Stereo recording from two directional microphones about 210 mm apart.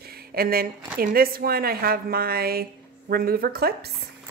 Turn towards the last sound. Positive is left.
turn(degrees=-50)  # may be behind; listen again after turning